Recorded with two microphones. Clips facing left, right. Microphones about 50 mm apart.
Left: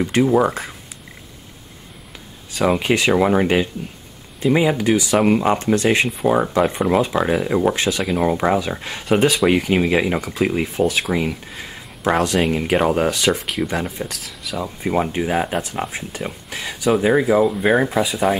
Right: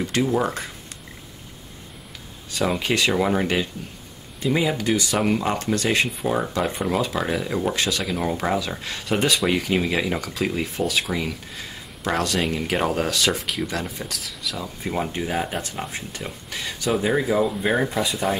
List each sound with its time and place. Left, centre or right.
0.0 s speech: left
2.5 s speech: centre
9.1 s speech: centre
9.5 s speech: centre
13.3 s speech: centre
13.7 s speech: left
14.0 s speech: centre
14.6 s speech: centre